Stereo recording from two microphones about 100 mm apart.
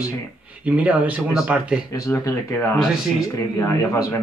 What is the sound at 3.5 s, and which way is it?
Speech, 30° left (ahead or behind).